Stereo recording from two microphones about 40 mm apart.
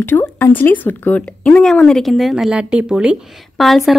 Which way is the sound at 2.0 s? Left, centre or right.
Centre.